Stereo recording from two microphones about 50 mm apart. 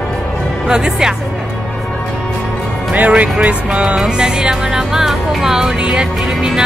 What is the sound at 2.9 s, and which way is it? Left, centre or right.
Speech, right.